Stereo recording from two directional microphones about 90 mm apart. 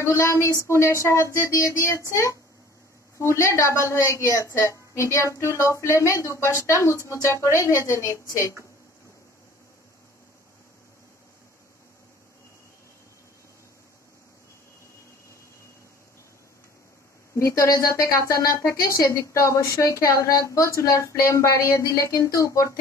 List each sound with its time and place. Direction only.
0.0 s a woman's voice: 30° left (ahead or behind)
3.2 s a woman's voice: 35° left (ahead or behind)
17.5 s a woman's voice: 35° left (ahead or behind)